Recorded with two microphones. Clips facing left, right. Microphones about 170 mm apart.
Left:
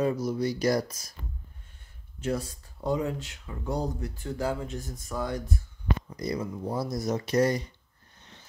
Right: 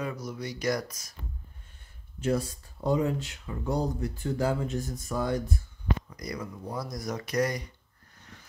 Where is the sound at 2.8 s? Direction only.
10° left (ahead or behind).